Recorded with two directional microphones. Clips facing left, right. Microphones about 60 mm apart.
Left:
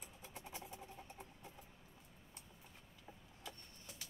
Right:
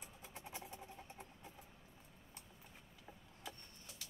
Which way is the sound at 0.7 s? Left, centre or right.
Centre.